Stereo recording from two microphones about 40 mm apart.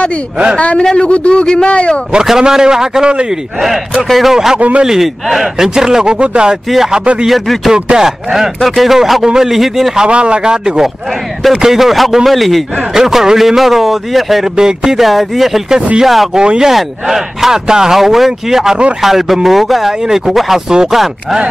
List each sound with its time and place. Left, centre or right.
0.6 s a man's voice: left
2.2 s a man's voice: centre
4.6 s speech: right
4.8 s a man's voice: centre
6.0 s a man's voice: right
7.2 s a man's voice: centre
10.0 s a man's voice: right; by 14.5 s centre
14.6 s a man's voice: centre
15.0 s speech: centre
16.3 s a man's voice: centre
16.7 s a man's voice: centre